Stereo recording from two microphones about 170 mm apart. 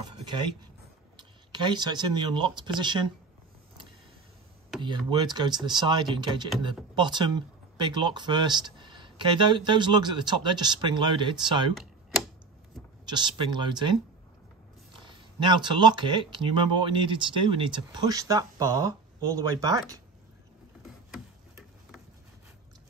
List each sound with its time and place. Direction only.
0.0 s a sound: 25° right (ahead or behind)
1.1 s speech: 25° right (ahead or behind)
4.8 s speech: 25° right (ahead or behind)
11.7 s computer keyboard: centre (ahead or behind)
13.0 s speech: 25° right (ahead or behind)
14.9 s speech: 30° right (ahead or behind)